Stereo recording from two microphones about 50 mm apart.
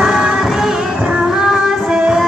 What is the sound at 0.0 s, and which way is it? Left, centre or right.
Music, centre.